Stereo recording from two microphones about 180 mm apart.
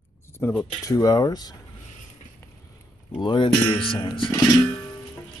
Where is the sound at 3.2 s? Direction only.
25° left (ahead or behind).